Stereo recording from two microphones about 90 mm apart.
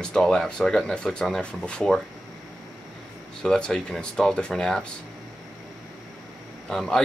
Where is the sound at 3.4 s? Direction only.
5° left (ahead or behind).